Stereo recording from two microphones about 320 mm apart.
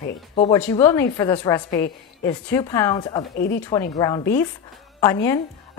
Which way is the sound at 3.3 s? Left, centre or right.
Left.